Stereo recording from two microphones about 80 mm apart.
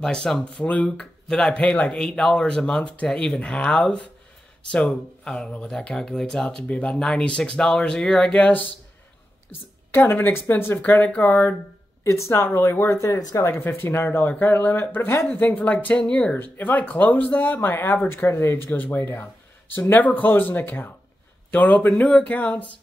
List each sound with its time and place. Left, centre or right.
0.0 s speech: centre
9.5 s a woman's voice: left
10.8 s speech: centre
12.0 s speech: left; by 16.3 s centre
16.3 s speech: left